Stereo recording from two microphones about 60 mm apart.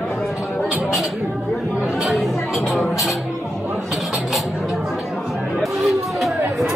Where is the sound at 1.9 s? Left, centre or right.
Centre.